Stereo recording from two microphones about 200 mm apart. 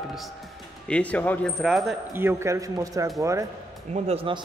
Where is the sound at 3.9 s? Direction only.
30° right (ahead or behind).